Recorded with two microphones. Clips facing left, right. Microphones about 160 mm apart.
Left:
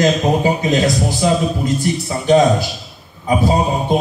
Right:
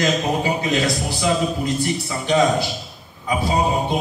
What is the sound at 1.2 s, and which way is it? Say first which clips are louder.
A man's voice: left 3 dB; 40° left (ahead or behind).